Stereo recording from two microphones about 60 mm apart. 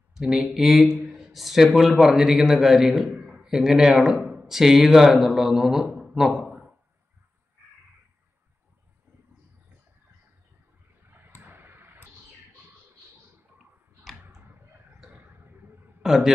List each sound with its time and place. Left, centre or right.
0.1 s a man's voice: centre
11.1 s a sound: right
14.2 s tick-tock: right
15.0 s vehicle: right
16.0 s a man's voice: centre